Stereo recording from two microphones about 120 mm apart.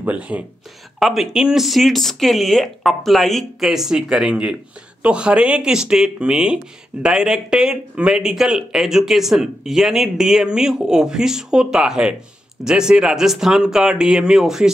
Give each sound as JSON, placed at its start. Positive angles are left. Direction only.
{"t": 0.0, "sound": "speech", "side_deg": -10}
{"t": 0.9, "sound": "speech", "side_deg": 0}